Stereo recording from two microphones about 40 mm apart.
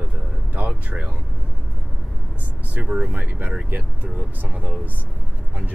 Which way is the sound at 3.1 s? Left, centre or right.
Right.